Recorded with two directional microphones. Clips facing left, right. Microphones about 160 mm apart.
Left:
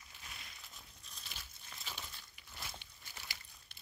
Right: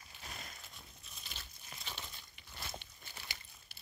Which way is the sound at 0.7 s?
Centre (ahead or behind).